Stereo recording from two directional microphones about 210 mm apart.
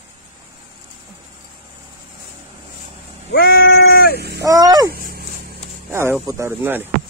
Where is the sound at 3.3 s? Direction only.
50° left (ahead or behind).